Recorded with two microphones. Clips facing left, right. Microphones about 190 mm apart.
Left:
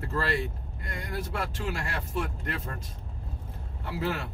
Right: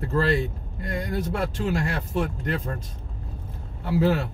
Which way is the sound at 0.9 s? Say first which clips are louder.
Right 7 dB; 35° right (ahead or behind).